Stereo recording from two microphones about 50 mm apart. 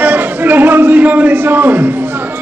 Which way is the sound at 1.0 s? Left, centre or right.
Right.